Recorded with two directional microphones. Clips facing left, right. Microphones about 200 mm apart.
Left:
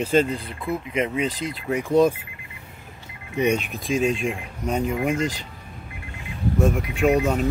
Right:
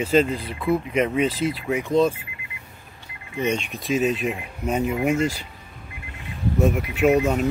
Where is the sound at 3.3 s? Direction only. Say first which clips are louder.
Left 3 dB; 10° left (ahead or behind); by 5.4 s 10° right (ahead or behind).